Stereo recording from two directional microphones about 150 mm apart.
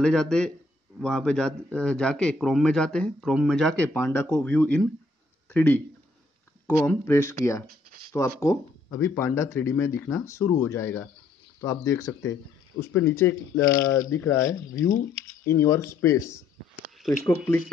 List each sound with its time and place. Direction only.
0.0 s a man's voice: 5° left (ahead or behind)
3.9 s speech: 15° left (ahead or behind)
6.9 s speech: 20° left (ahead or behind)